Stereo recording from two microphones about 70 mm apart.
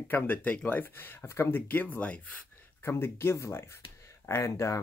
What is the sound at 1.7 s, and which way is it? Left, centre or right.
Speech, left.